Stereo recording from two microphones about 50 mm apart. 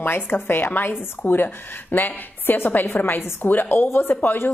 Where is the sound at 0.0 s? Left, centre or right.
Left.